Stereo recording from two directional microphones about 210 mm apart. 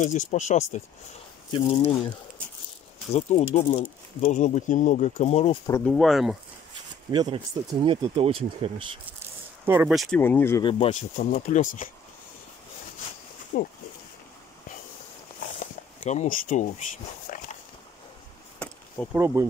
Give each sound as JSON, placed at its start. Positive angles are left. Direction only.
{"t": 0.0, "sound": "speech", "side_deg": 35}
{"t": 1.5, "sound": "speech", "side_deg": 20}
{"t": 3.2, "sound": "speech", "side_deg": 30}
{"t": 5.7, "sound": "speech", "side_deg": 0}
{"t": 7.1, "sound": "speech", "side_deg": -20}
{"t": 9.7, "sound": "speech", "side_deg": -5}
{"t": 10.2, "sound": "speech", "side_deg": 10}
{"t": 10.6, "sound": "speech", "side_deg": 25}
{"t": 13.5, "sound": "speech", "side_deg": 40}
{"t": 15.6, "sound": "a sound", "side_deg": 35}
{"t": 19.1, "sound": "speech", "side_deg": -15}